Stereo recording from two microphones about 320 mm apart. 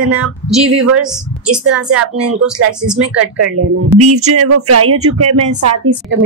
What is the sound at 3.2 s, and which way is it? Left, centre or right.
Speech, right.